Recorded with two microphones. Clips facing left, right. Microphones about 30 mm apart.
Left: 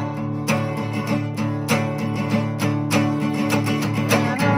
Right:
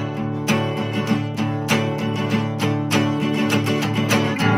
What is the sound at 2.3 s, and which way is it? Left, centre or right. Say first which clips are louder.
Music: left 1 dB; right.